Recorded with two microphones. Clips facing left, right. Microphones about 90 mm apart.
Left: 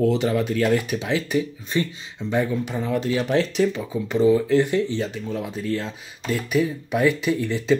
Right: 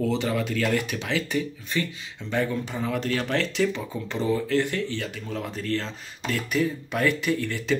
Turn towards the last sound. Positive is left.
turn(degrees=20)  # may be behind; listen again after turning